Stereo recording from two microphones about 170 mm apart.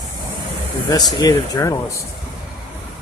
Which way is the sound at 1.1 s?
25° left (ahead or behind).